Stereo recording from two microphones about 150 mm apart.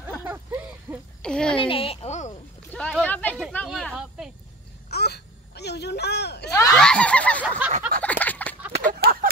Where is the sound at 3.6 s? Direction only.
Centre (ahead or behind).